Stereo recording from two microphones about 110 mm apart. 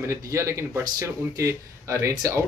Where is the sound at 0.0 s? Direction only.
25° right (ahead or behind).